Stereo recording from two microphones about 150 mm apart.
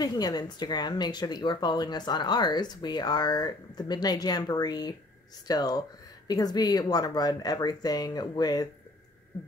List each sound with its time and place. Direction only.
0.0 s speech: 25° left (ahead or behind)